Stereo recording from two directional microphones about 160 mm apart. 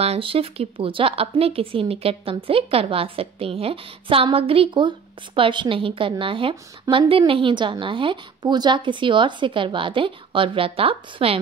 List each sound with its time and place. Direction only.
0.0 s speech: 40° right (ahead or behind)